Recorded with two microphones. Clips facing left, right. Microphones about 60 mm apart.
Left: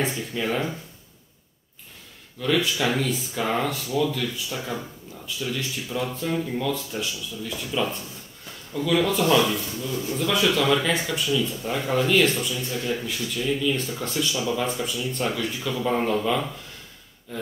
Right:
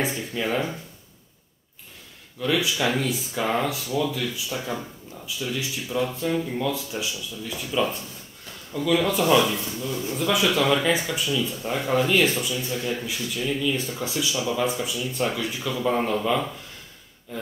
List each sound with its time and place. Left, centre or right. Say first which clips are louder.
0.0 s speech: even; centre
2.4 s speech: even; centre
9.2 s speech: right 1 dB; centre